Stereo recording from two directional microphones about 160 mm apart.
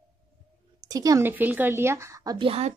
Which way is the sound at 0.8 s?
25° right (ahead or behind).